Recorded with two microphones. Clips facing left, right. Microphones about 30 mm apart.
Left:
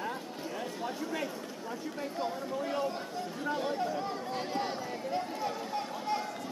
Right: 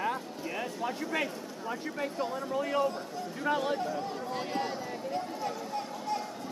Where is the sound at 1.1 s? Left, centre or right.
Right.